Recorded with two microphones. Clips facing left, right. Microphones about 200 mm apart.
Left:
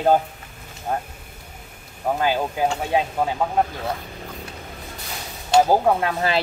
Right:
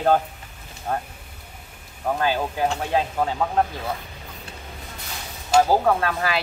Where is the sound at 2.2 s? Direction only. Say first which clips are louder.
Left 1 dB; 15° left (ahead or behind).